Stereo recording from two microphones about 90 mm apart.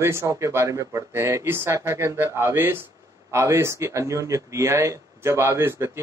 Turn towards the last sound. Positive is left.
turn(degrees=-30)  # may be behind; listen again after turning